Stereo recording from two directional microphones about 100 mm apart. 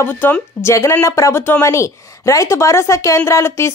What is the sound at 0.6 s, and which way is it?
Speech, 30° left (ahead or behind).